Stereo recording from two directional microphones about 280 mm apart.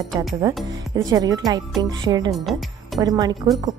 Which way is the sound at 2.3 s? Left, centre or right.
Centre.